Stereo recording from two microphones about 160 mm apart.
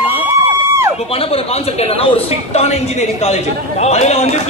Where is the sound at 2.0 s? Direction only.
40° left (ahead or behind).